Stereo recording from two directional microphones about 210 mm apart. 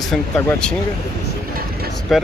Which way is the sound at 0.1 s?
5° left (ahead or behind).